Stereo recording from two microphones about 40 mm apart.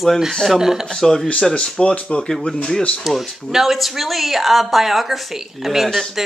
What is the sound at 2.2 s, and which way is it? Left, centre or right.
Speech, centre.